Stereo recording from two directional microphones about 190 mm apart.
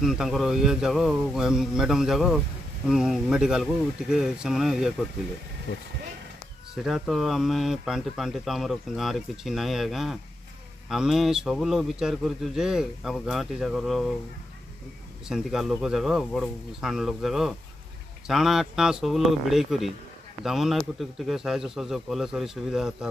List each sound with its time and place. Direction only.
0.0 s speech: centre (ahead or behind)
5.7 s speech: 60° left (ahead or behind)
6.7 s speech: centre (ahead or behind)
15.2 s speech: centre (ahead or behind)